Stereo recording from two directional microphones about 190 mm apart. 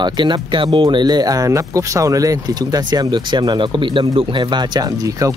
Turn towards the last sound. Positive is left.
turn(degrees=-20)  # may be behind; listen again after turning